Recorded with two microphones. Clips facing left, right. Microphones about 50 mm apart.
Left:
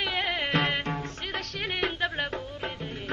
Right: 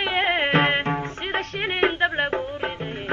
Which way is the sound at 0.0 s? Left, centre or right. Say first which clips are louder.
Right 7 dB; right.